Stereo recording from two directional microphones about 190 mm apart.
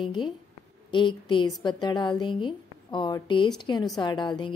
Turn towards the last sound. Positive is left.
turn(degrees=25)  # may be behind; listen again after turning